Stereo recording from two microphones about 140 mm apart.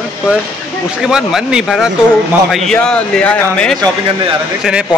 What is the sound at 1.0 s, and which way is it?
Speech, 5° right (ahead or behind).